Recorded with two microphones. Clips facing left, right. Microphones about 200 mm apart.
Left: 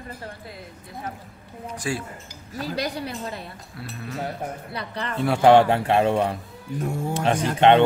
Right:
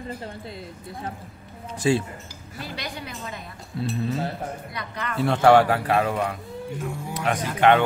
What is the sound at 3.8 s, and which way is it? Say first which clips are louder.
Speech: right 9 dB; 25° right (ahead or behind).